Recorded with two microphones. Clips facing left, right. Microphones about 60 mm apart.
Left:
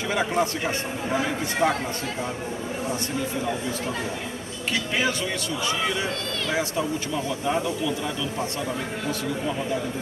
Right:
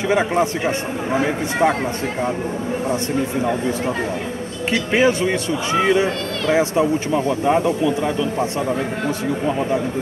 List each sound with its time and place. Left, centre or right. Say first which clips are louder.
0.1 s a man's voice: right 6 dB; right
4.9 s speech: right 11 dB; right